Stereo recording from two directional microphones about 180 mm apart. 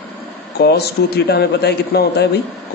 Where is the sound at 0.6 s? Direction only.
65° left (ahead or behind).